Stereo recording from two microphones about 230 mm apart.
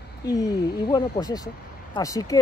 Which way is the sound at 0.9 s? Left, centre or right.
Centre.